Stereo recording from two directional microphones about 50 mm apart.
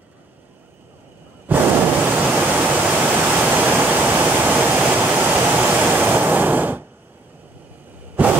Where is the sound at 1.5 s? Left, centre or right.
Right.